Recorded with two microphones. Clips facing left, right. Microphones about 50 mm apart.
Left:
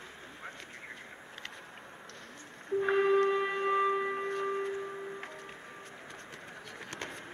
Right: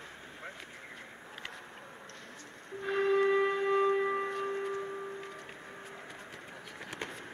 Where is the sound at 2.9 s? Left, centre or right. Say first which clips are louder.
Left 1 dB; centre.